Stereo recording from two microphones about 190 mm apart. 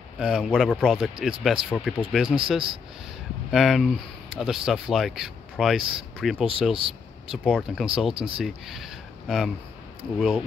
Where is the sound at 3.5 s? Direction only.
Centre (ahead or behind).